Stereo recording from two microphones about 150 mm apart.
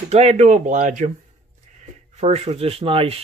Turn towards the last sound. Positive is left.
turn(degrees=-40)  # may be behind; listen again after turning